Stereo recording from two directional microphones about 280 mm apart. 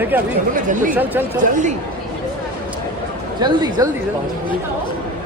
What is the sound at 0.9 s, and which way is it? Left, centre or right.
Speech, centre.